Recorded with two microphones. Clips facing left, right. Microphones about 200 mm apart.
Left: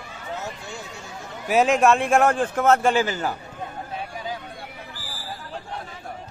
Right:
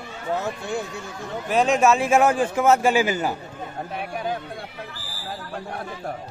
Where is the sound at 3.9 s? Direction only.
60° right (ahead or behind).